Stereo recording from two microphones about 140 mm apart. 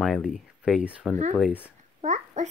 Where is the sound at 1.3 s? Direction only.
10° left (ahead or behind).